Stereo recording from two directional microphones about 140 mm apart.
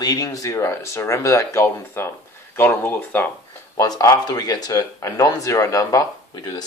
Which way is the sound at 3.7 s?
25° left (ahead or behind).